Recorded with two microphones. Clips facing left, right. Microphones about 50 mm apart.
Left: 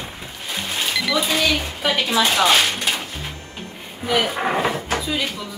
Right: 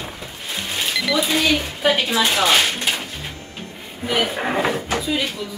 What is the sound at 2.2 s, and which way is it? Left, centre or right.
Speech, centre.